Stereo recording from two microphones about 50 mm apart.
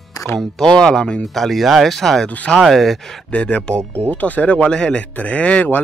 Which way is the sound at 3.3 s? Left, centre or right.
Left.